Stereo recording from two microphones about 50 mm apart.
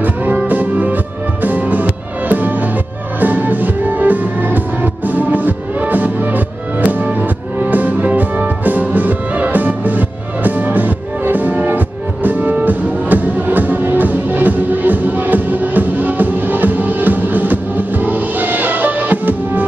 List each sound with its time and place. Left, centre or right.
0.0 s music: right